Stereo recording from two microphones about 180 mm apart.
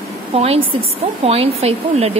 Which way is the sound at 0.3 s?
35° right (ahead or behind).